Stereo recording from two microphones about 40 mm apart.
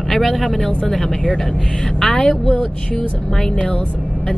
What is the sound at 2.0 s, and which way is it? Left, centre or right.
Speech, left.